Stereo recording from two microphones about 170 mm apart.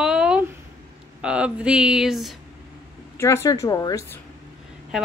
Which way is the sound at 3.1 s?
15° left (ahead or behind).